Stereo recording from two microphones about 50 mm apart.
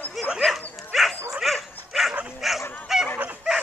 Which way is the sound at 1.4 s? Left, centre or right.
Centre.